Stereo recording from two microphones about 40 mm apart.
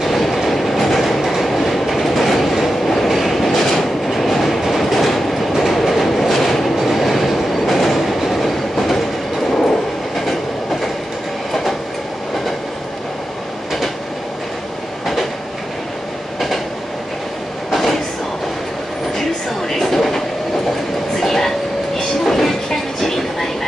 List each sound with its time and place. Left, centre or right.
0.0 s train: centre
17.6 s train: centre
19.7 s train: centre